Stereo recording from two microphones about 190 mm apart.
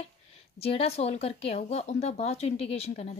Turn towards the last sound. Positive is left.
turn(degrees=35)  # may be behind; listen again after turning